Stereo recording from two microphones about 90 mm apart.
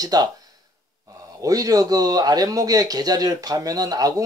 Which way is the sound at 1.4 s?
40° right (ahead or behind).